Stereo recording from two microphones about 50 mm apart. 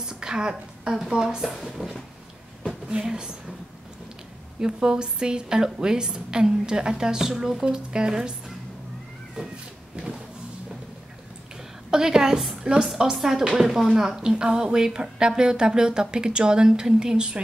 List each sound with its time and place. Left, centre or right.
0.0 s a sound: centre
0.9 s a woman's voice: centre
1.5 s speech: centre
2.9 s a woman's voice: centre
4.6 s a woman's voice: centre
10.0 s a sound: right
11.9 s a woman's voice: centre